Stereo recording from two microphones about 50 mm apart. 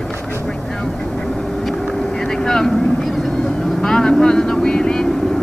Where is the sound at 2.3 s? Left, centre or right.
Centre.